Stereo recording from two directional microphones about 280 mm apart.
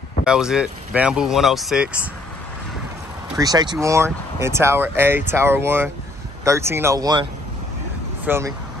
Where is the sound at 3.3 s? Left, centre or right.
Centre.